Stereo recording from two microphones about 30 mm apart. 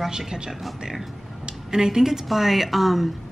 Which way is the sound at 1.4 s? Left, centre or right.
Right.